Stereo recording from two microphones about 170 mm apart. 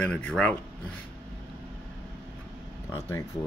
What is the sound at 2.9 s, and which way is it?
Speech, 15° left (ahead or behind).